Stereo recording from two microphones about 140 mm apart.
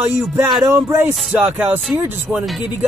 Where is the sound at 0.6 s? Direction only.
20° right (ahead or behind).